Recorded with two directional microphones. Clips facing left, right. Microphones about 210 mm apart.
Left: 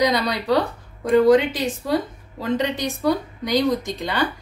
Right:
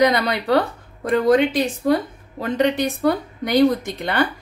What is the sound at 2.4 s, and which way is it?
A woman's voice, 60° right (ahead or behind).